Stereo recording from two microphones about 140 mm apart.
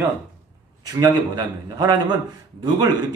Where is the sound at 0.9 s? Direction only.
25° right (ahead or behind).